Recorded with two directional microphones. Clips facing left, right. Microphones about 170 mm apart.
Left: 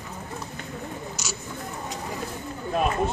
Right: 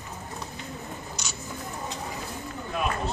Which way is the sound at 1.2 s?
5° left (ahead or behind).